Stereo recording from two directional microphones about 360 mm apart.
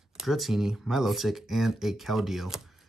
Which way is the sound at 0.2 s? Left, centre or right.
Centre.